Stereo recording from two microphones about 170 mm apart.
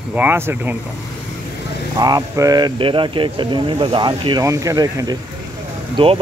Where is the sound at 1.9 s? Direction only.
20° right (ahead or behind).